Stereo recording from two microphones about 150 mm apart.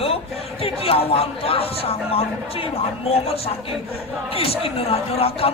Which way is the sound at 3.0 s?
40° left (ahead or behind).